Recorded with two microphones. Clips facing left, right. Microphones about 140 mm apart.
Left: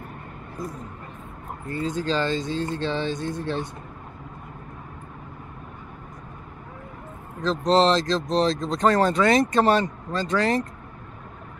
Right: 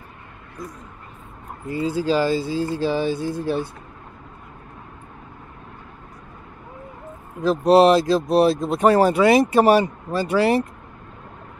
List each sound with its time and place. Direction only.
1.7 s speech: 5° right (ahead or behind)
7.3 s speech: 10° right (ahead or behind)